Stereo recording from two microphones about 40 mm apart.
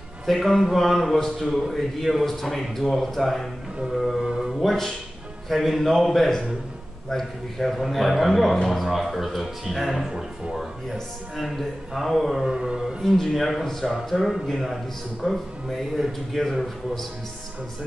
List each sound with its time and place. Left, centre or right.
0.3 s a man's voice: centre
12.4 s a sound: right
13.0 s a man's voice: centre
16.4 s a man's voice: centre